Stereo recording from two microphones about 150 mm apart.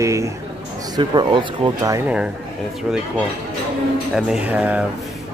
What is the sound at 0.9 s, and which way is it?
Speech, 30° right (ahead or behind).